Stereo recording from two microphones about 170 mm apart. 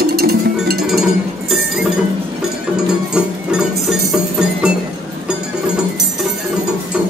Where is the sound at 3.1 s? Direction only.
5° right (ahead or behind).